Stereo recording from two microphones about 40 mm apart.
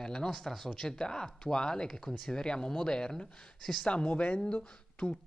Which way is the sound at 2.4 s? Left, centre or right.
Left.